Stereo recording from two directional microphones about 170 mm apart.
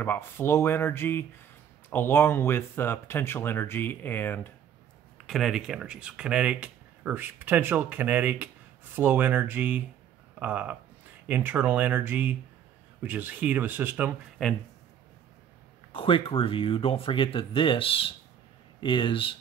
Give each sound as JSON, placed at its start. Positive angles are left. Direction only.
{"t": 0.0, "sound": "speech", "side_deg": 10}
{"t": 5.2, "sound": "speech", "side_deg": 0}
{"t": 14.4, "sound": "a man's voice", "side_deg": 0}
{"t": 15.9, "sound": "speech", "side_deg": 30}